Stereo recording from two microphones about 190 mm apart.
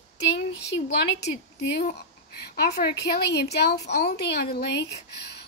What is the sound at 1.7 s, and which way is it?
A woman's voice, 60° left (ahead or behind).